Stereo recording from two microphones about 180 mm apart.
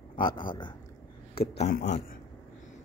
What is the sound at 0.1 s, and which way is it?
Speech, 30° left (ahead or behind).